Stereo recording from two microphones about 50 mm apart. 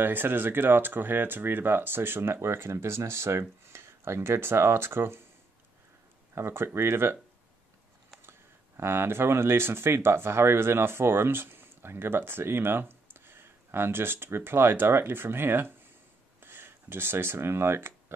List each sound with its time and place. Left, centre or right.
0.0 s speech: right
6.3 s speech: right
8.2 s speech: right
16.3 s a sound: right